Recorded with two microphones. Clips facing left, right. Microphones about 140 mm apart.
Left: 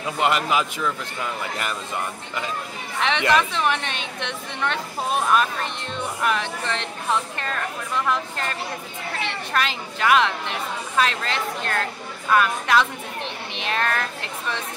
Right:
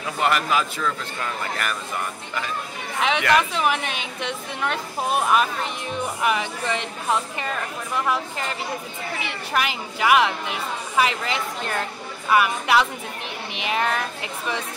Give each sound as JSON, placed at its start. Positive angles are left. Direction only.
{"t": 0.0, "sound": "speech", "side_deg": 20}
{"t": 3.3, "sound": "a woman's voice", "side_deg": -5}